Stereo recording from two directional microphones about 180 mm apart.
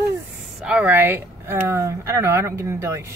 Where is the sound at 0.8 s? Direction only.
15° right (ahead or behind).